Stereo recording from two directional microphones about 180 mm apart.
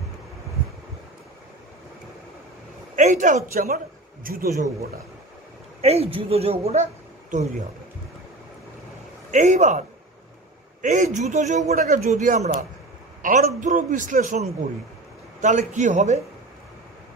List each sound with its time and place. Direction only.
3.0 s a man's voice: 45° right (ahead or behind)
5.8 s a woman's voice: 35° right (ahead or behind)
9.3 s a man's voice: 40° right (ahead or behind)